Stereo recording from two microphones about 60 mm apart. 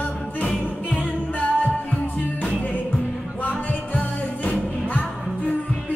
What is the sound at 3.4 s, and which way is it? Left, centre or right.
Music, left.